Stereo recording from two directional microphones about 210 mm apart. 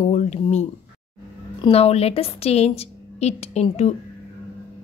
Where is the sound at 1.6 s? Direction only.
30° left (ahead or behind).